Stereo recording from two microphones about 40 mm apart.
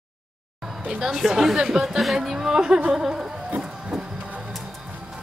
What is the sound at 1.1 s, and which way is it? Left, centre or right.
Speech, centre.